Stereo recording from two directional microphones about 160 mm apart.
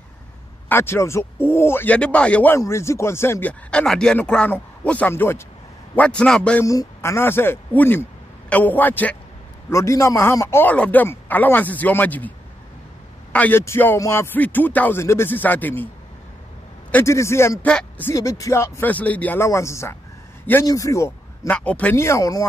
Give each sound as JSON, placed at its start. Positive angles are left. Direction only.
{"t": 0.7, "sound": "speech", "side_deg": 15}
{"t": 6.6, "sound": "speech", "side_deg": 20}
{"t": 16.9, "sound": "a man's voice", "side_deg": 15}
{"t": 21.5, "sound": "speech", "side_deg": 10}